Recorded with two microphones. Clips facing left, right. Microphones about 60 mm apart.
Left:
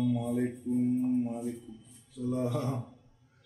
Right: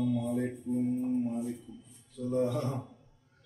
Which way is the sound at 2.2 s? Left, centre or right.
Centre.